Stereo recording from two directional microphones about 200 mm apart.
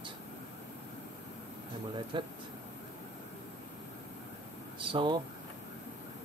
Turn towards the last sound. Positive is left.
turn(degrees=-25)  # may be behind; listen again after turning